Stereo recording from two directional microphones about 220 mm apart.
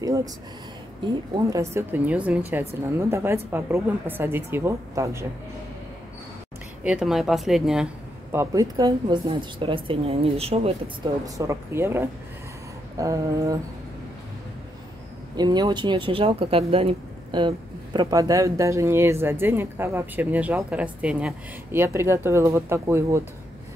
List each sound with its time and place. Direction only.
0.0 s a sound: 15° right (ahead or behind)
1.3 s speech: 15° right (ahead or behind)
6.8 s speech: 5° right (ahead or behind); by 10.7 s 25° right (ahead or behind)
11.2 s speech: 15° right (ahead or behind)
15.3 s speech: 20° right (ahead or behind)